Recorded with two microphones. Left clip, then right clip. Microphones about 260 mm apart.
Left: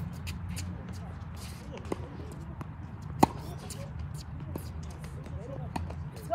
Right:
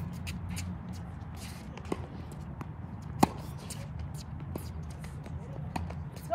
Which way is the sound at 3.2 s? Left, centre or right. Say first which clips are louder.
Left 3 dB; centre.